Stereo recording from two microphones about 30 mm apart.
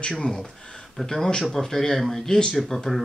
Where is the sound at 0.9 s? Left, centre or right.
Centre.